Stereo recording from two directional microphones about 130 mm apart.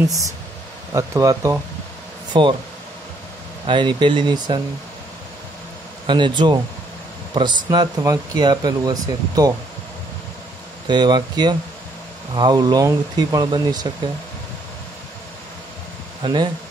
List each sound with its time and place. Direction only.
0.9 s speech: 25° right (ahead or behind)
3.6 s speech: 40° right (ahead or behind)
6.0 s speech: 35° right (ahead or behind)
10.9 s speech: 35° right (ahead or behind)
16.2 s speech: 40° right (ahead or behind)